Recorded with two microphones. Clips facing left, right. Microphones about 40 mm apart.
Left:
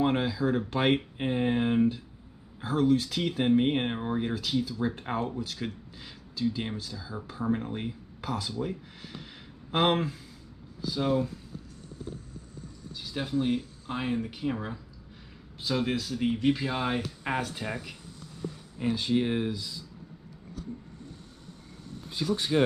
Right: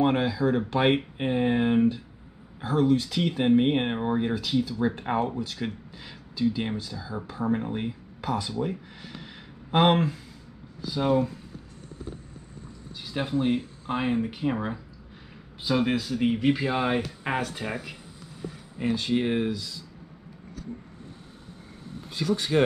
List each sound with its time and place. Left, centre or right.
0.0 s speech: centre
9.0 s a sound: centre
10.8 s speech: centre
12.9 s speech: centre
17.4 s speech: centre
18.8 s speech: right
22.5 s speech: right